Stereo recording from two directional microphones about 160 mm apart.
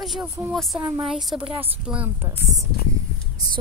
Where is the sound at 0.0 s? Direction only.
Centre (ahead or behind).